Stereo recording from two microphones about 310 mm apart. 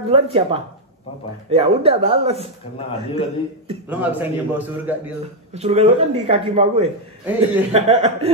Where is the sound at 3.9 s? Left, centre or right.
Centre.